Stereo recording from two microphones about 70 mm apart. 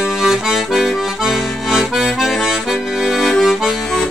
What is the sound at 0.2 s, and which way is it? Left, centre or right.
Accordion, centre.